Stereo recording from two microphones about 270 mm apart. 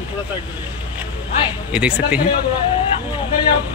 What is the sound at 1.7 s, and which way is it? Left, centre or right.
Speech, centre.